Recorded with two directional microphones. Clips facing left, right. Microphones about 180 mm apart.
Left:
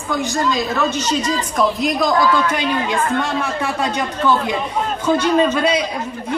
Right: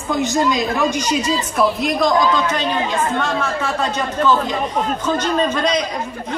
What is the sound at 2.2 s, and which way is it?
Speech, 20° right (ahead or behind).